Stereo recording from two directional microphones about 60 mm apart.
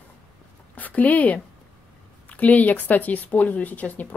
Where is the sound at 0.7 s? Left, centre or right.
Left.